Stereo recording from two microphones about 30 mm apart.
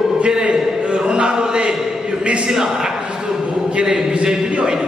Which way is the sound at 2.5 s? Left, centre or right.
Centre.